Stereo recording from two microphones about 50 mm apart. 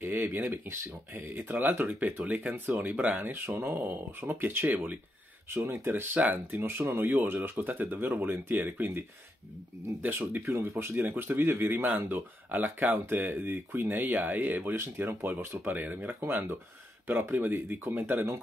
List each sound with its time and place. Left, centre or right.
0.0 s speech: right
3.2 s speech: right
3.6 s speech: right
5.5 s speech: right
6.1 s speech: right
6.8 s speech: right
7.3 s speech: right
10.0 s speech: right
10.5 s speech: right
17.3 s speech: right